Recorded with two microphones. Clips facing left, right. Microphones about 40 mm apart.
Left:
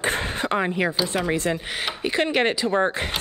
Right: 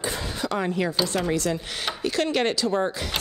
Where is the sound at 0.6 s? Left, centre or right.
Left.